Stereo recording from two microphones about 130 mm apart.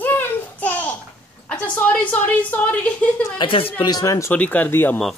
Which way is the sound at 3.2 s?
40° left (ahead or behind).